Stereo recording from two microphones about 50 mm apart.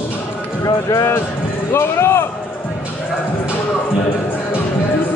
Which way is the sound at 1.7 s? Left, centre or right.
Left.